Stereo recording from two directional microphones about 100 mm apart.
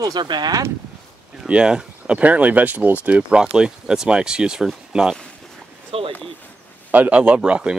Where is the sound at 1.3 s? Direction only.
10° right (ahead or behind).